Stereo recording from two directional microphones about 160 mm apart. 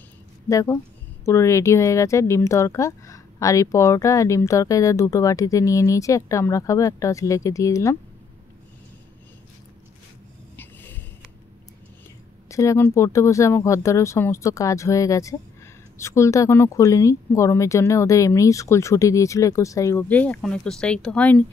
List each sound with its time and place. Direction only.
0.5 s speech: 20° left (ahead or behind)
10.5 s a sound: 15° left (ahead or behind)
12.4 s speech: 20° left (ahead or behind)